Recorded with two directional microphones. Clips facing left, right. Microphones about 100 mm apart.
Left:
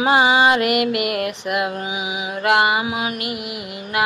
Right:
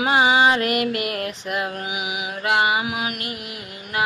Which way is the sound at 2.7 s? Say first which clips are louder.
Left 2 dB; 25° left (ahead or behind).